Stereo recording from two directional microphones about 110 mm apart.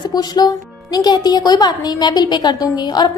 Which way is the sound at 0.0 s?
40° left (ahead or behind).